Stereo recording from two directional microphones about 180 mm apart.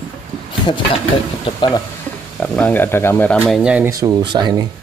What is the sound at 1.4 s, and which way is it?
Dishes, 25° left (ahead or behind).